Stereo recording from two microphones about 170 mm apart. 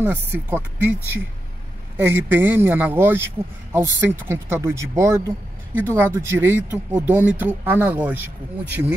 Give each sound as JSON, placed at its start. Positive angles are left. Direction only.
{"t": 0.0, "sound": "speech", "side_deg": -10}